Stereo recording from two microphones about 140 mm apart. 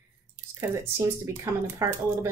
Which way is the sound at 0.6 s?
20° right (ahead or behind).